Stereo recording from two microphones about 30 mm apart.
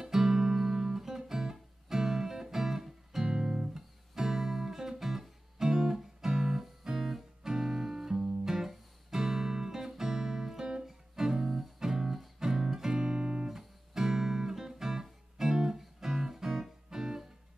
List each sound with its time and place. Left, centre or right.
0.0 s guitar: centre
3.3 s guitar: right
3.7 s guitar: centre
10.6 s music: right
13.5 s music: centre